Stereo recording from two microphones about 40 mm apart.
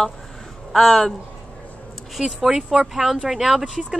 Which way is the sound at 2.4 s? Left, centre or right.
Centre.